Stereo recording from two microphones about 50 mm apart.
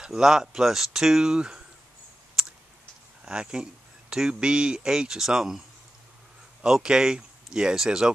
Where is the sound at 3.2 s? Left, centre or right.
Centre.